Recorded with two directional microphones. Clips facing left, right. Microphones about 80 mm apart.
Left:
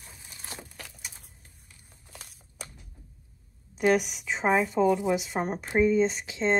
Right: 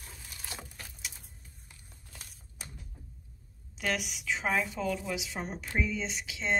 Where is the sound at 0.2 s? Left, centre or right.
Left.